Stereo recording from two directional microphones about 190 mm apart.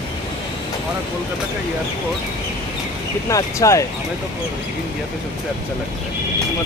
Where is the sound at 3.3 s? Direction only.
15° left (ahead or behind).